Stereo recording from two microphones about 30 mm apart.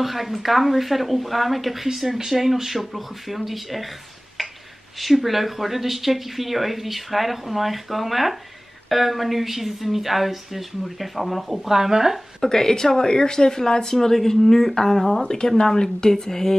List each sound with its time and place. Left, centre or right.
0.0 s a woman's voice: centre
2.0 s a woman's voice: centre
4.4 s a sound: centre
5.1 s a woman's voice: centre
12.4 s speech: centre
15.2 s speech: left